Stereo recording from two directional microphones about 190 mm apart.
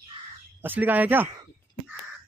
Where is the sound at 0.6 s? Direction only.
10° right (ahead or behind).